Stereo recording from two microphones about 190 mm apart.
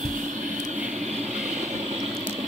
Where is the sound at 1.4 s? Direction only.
40° right (ahead or behind).